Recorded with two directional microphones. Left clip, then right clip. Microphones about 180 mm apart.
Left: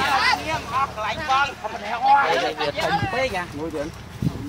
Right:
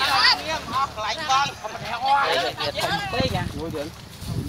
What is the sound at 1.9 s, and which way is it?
Speech, 15° right (ahead or behind).